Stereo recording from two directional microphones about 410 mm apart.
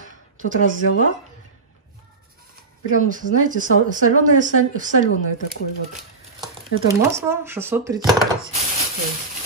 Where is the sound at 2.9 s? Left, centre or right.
Centre.